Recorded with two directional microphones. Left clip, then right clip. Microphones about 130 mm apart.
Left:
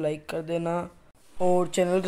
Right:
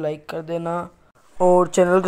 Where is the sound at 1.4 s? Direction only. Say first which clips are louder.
Right 8 dB; 25° right (ahead or behind).